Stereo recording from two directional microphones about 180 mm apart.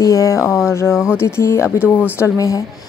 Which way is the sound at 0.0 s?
20° left (ahead or behind).